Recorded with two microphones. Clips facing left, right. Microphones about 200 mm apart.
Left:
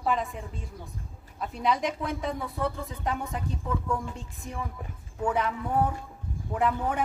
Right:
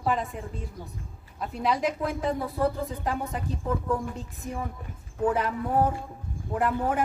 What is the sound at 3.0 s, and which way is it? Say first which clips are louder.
A woman's voice: left 3 dB; centre (ahead or behind).